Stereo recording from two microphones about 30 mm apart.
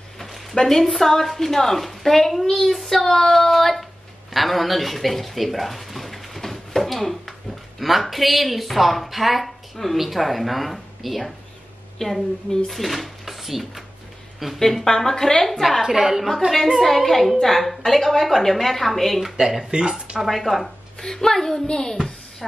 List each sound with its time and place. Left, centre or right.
0.2 s a sound: centre
0.6 s a woman's voice: centre
0.8 s a woman's voice: centre
14.7 s a woman's voice: centre
15.8 s a woman's voice: centre
16.7 s a woman's voice: centre
19.6 s speech: right
20.2 s a woman's voice: centre
21.2 s a woman's voice: centre
21.6 s a child's voice: left
22.4 s a woman's voice: centre